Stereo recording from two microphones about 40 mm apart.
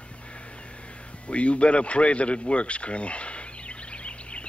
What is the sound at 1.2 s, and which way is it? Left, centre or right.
Speech, left.